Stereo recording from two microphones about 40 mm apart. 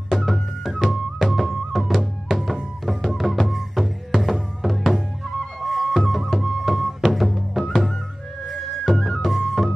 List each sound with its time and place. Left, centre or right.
0.1 s music: centre